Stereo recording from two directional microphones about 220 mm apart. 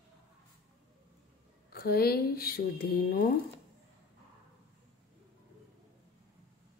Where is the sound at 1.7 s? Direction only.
45° left (ahead or behind).